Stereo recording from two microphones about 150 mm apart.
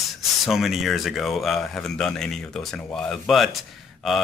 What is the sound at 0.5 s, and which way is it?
Speech, centre (ahead or behind).